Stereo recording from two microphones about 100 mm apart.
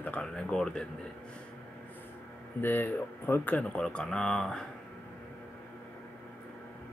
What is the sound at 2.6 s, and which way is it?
Speech, 20° left (ahead or behind).